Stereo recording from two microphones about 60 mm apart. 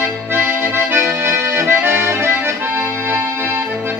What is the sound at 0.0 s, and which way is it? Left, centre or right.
Accordion, right.